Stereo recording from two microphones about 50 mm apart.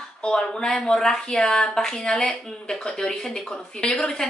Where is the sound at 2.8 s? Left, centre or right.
Centre.